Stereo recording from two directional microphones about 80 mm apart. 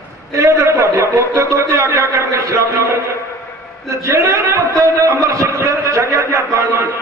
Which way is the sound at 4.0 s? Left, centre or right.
Right.